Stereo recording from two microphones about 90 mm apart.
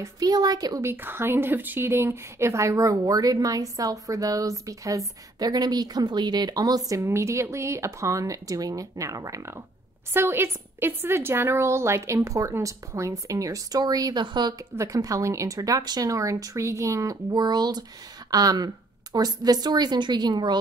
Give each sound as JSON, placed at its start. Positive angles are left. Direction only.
{"t": 0.0, "sound": "speech", "side_deg": -45}
{"t": 0.8, "sound": "a woman's voice", "side_deg": -25}
{"t": 6.9, "sound": "a woman's voice", "side_deg": -35}
{"t": 14.8, "sound": "a woman's voice", "side_deg": -40}
{"t": 17.3, "sound": "speech", "side_deg": -50}